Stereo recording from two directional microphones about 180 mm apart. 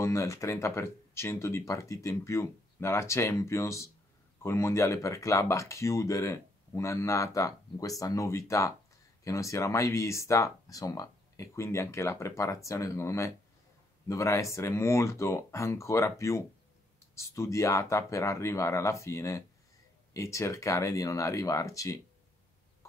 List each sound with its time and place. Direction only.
0.0 s speech: 15° left (ahead or behind)